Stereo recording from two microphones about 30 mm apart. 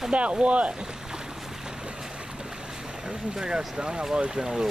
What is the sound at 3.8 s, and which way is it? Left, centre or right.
Speech, right.